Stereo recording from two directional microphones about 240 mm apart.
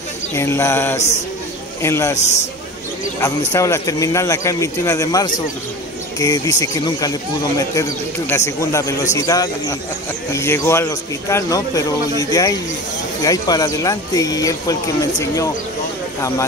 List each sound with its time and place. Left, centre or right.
0.3 s speech: centre
2.1 s a man's voice: left
3.2 s speech: centre